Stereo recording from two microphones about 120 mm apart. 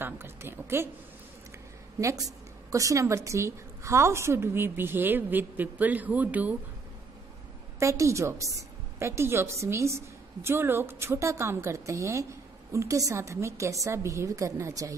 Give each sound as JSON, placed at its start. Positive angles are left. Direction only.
{"t": 0.0, "sound": "a sound", "side_deg": -20}
{"t": 2.0, "sound": "a woman's voice", "side_deg": -30}
{"t": 7.8, "sound": "a woman's voice", "side_deg": -25}